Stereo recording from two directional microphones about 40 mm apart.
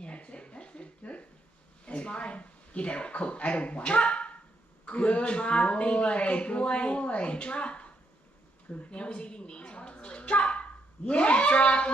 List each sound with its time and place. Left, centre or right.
0.0 s a sound: left
1.9 s a woman's voice: left
8.9 s speech: left